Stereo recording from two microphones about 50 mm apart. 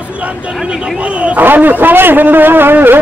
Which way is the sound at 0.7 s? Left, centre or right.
Right.